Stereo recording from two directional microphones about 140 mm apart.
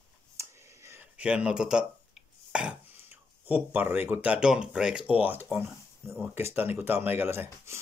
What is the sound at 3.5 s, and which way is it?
Speech, 10° right (ahead or behind).